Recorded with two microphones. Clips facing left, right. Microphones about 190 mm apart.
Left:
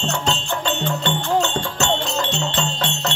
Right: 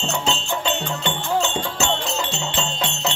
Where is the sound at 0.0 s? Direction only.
5° right (ahead or behind).